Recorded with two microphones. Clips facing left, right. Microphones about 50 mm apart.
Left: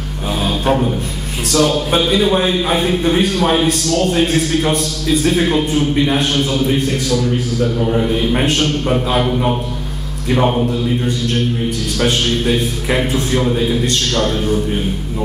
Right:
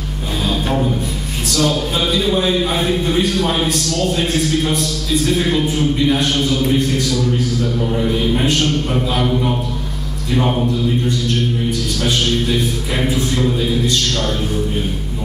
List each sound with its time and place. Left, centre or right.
1.5 s a man's voice: left
2.0 s a man's voice: left
4.2 s a man's voice: left
7.8 s a man's voice: centre
8.3 s a man's voice: left